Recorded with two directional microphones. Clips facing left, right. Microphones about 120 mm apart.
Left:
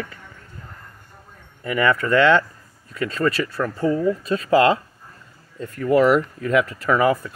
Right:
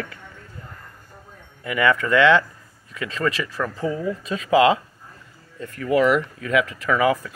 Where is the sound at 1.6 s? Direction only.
35° left (ahead or behind).